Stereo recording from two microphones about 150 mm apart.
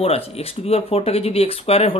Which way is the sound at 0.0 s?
40° left (ahead or behind).